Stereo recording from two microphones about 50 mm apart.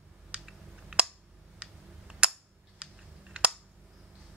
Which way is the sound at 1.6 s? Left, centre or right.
Centre.